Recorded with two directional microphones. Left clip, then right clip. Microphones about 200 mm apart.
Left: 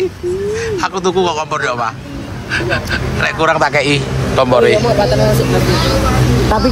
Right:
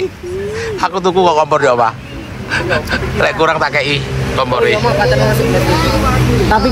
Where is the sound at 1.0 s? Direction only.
5° left (ahead or behind).